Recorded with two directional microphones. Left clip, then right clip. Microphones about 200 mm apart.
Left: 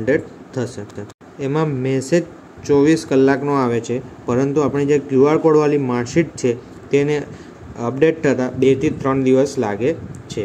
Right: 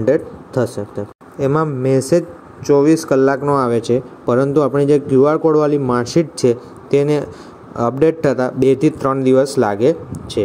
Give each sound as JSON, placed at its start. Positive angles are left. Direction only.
{"t": 0.0, "sound": "speech", "side_deg": -25}